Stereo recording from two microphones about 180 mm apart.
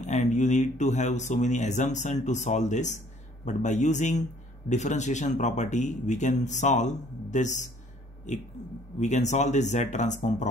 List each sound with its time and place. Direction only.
0.0 s a man's voice: 40° left (ahead or behind)